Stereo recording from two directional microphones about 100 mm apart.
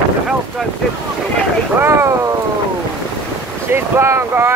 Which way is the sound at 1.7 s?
30° right (ahead or behind).